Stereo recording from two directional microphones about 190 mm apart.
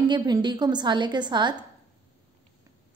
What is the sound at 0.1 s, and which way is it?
A woman's voice, 25° right (ahead or behind).